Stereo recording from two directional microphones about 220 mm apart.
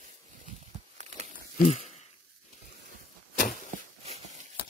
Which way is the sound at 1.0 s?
30° right (ahead or behind).